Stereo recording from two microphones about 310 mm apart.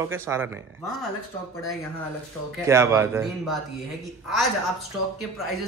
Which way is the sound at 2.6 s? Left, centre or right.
Centre.